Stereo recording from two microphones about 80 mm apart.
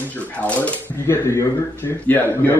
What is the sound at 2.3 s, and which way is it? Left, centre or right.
Speech, left.